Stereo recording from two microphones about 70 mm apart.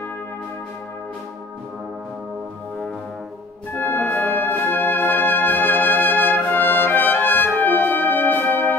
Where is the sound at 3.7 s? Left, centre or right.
Left.